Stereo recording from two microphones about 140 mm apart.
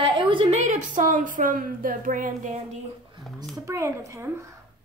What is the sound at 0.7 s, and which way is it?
A woman's voice, 65° right (ahead or behind).